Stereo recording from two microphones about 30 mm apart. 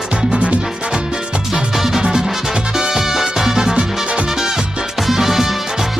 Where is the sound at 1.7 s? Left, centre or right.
Centre.